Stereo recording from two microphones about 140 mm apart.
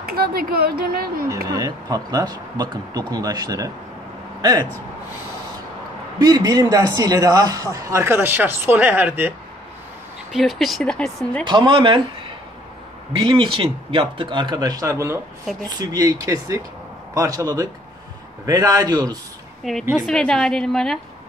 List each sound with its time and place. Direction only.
0.0 s speech: 90° right
1.5 s a man's voice: 30° right (ahead or behind)
6.2 s a man's voice: 25° right (ahead or behind)
10.3 s speech: centre (ahead or behind)
11.4 s speech: 35° right (ahead or behind)
13.2 s a man's voice: 40° right (ahead or behind)
19.7 s speech: centre (ahead or behind)